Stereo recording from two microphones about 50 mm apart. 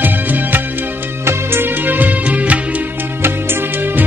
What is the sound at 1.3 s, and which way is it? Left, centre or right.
Music, right.